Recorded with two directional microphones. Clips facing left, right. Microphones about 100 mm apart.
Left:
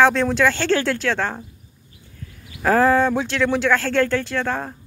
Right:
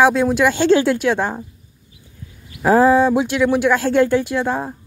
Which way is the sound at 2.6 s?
15° right (ahead or behind).